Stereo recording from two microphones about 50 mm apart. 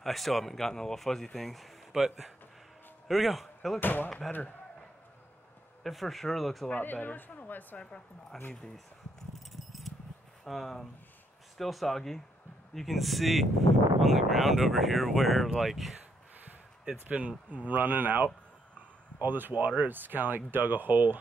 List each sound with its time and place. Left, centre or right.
0.0 s a man's voice: centre
3.8 s speech: left
5.9 s speech: centre
6.7 s speech: left
7.8 s a woman's voice: centre
9.3 s keys jangling: centre
10.4 s speech: centre
16.9 s speech: centre
17.5 s speech: right